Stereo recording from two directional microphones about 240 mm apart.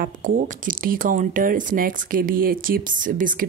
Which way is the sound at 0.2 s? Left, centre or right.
Right.